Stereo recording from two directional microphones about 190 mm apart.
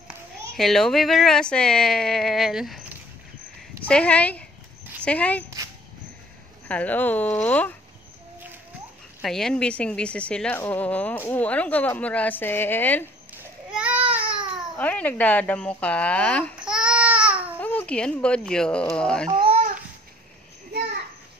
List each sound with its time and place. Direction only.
0.6 s speech: centre (ahead or behind)
6.7 s speech: 10° left (ahead or behind)
9.2 s speech: centre (ahead or behind)
13.4 s a sound: 5° right (ahead or behind)
14.8 s speech: 10° left (ahead or behind)
16.5 s babbling: 5° right (ahead or behind)
17.6 s speech: 10° left (ahead or behind)
19.4 s babbling: 35° right (ahead or behind)